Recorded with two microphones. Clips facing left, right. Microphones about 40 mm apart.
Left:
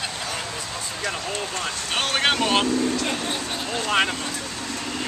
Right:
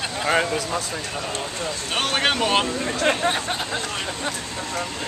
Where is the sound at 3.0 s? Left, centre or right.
Right.